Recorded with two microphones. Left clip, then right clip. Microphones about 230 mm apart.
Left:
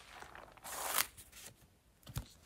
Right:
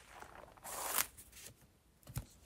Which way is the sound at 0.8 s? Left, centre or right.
Centre.